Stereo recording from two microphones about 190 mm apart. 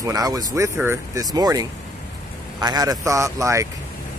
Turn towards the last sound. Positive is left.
turn(degrees=-15)  # may be behind; listen again after turning